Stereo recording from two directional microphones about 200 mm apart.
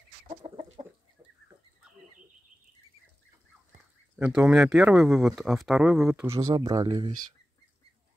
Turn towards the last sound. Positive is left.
turn(degrees=-20)  # may be behind; listen again after turning